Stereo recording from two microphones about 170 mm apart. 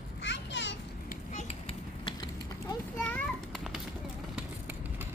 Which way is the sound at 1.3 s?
45° left (ahead or behind).